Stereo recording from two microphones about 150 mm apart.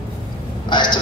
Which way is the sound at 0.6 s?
30° left (ahead or behind).